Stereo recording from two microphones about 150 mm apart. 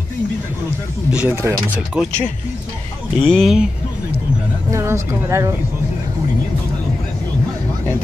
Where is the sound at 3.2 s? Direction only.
5° left (ahead or behind).